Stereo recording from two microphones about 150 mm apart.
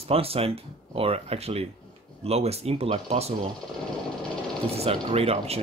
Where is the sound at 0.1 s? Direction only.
40° right (ahead or behind).